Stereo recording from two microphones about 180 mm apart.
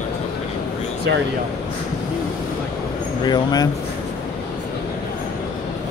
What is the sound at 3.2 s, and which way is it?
Speech, 25° left (ahead or behind).